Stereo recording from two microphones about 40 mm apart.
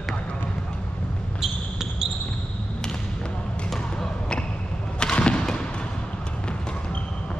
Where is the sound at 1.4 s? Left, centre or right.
Centre.